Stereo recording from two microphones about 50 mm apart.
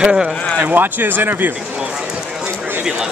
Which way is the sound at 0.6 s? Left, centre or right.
Right.